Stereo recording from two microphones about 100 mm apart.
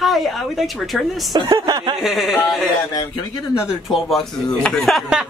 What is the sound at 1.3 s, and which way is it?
Speech, 45° right (ahead or behind).